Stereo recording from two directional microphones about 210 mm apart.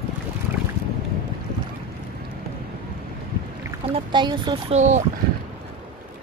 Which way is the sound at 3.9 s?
20° right (ahead or behind).